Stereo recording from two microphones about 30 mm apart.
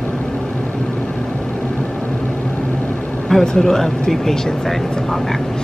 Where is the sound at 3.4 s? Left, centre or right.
Centre.